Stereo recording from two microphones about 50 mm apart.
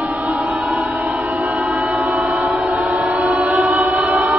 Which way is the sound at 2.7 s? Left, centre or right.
Right.